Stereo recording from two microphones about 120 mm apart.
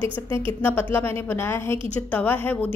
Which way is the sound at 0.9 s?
20° left (ahead or behind).